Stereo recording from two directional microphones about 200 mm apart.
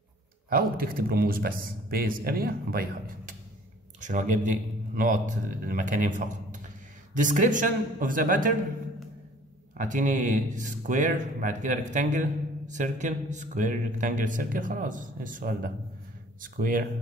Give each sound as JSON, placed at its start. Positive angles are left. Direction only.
{"t": 0.5, "sound": "a man's voice", "side_deg": -45}
{"t": 9.8, "sound": "a man's voice", "side_deg": -40}